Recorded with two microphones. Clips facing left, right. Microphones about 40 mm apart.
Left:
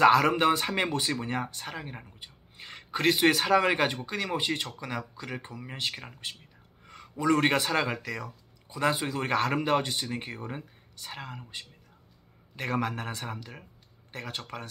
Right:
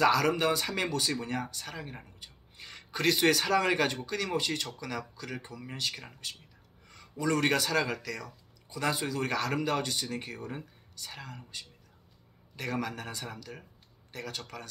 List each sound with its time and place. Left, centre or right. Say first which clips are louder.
0.0 s speech: left 5 dB; left